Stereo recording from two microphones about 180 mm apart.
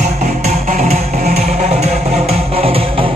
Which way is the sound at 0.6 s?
40° right (ahead or behind).